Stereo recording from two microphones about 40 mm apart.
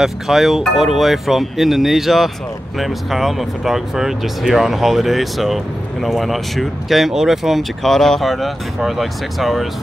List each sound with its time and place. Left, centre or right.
0.0 s speech: centre
7.8 s speech: centre